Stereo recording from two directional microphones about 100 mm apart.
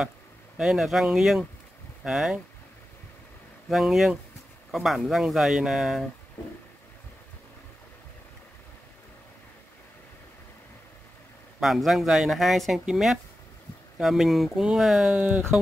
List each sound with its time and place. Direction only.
0.6 s speech: 5° right (ahead or behind)
3.7 s speech: centre (ahead or behind)
11.6 s speech: centre (ahead or behind)
15.1 s speech: 15° right (ahead or behind)